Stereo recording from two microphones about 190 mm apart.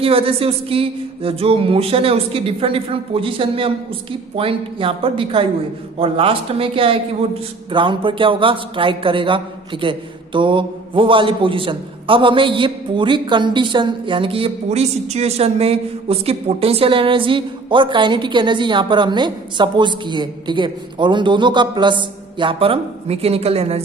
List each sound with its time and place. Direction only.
0.0 s a man's voice: 30° right (ahead or behind)